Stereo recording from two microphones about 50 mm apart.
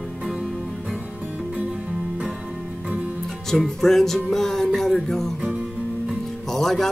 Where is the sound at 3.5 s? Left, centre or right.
Centre.